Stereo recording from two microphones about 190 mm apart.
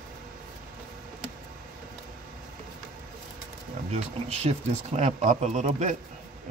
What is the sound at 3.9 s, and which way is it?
Speech, 35° right (ahead or behind).